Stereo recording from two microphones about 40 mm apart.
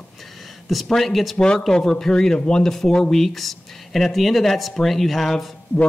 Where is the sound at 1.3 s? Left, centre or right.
Left.